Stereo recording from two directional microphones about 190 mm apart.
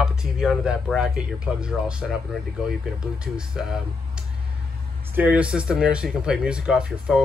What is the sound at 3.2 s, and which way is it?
Speech, 5° right (ahead or behind).